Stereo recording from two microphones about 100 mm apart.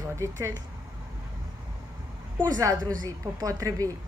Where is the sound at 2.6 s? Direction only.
35° right (ahead or behind).